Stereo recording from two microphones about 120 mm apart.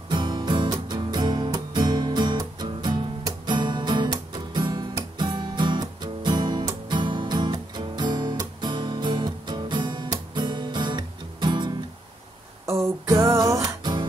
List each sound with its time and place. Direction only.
0.1 s music: 35° right (ahead or behind)
13.0 s music: 25° right (ahead or behind)